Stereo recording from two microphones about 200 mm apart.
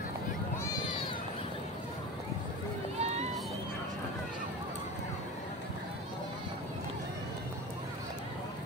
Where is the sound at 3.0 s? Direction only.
35° right (ahead or behind).